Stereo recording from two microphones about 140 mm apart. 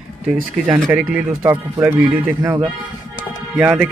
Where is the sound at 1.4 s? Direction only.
15° right (ahead or behind).